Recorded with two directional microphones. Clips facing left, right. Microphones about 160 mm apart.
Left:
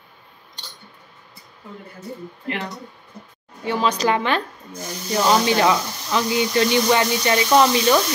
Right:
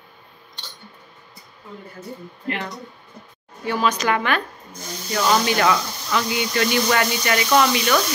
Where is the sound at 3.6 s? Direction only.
25° left (ahead or behind).